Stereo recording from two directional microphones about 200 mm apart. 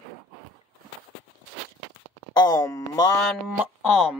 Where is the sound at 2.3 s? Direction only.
20° left (ahead or behind).